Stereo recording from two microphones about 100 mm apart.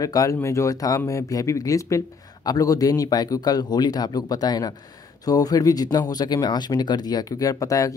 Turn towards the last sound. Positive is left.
turn(degrees=35)  # may be behind; listen again after turning